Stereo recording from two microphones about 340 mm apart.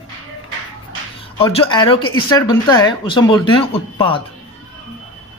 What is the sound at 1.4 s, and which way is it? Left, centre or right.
Speech, centre.